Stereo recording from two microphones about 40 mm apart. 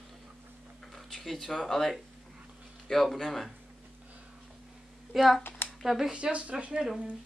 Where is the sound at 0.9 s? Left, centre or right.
Centre.